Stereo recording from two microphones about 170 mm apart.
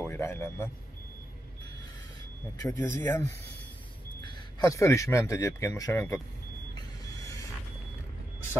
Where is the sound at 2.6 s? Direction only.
15° left (ahead or behind).